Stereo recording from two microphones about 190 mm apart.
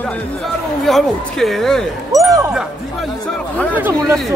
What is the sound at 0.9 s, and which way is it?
Speech, centre (ahead or behind).